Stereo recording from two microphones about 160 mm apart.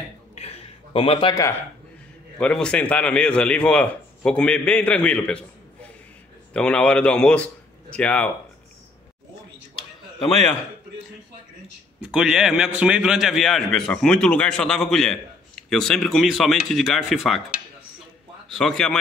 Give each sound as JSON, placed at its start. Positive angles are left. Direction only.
{"t": 0.4, "sound": "a sound", "side_deg": 40}
{"t": 2.3, "sound": "a man's voice", "side_deg": 5}
{"t": 12.0, "sound": "a man's voice", "side_deg": -5}
{"t": 18.5, "sound": "a man's voice", "side_deg": 5}